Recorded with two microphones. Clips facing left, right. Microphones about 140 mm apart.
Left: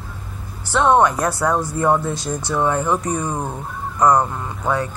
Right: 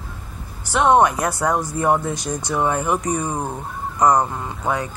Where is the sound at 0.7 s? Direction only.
15° right (ahead or behind).